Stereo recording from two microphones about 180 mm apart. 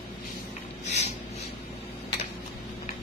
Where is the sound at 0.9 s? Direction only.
40° left (ahead or behind).